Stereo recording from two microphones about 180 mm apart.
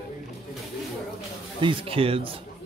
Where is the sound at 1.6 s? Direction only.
30° right (ahead or behind).